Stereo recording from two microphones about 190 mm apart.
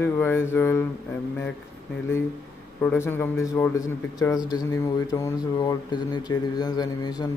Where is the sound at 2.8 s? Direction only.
10° left (ahead or behind).